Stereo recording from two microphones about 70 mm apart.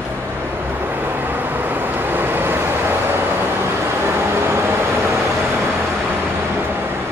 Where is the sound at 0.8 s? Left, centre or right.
Right.